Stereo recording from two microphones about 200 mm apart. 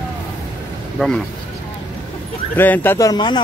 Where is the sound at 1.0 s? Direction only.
5° left (ahead or behind).